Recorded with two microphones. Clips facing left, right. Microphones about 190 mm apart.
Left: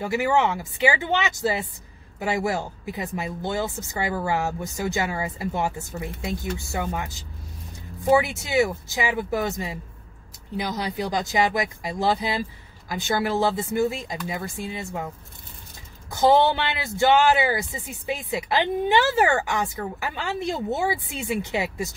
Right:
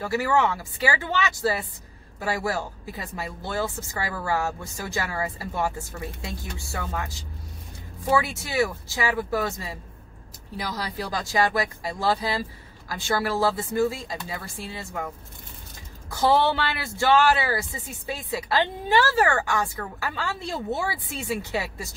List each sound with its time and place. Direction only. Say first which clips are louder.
0.0 s speech: left 1 dB; 20° left (ahead or behind)
16.1 s speech: left 3 dB; 20° left (ahead or behind)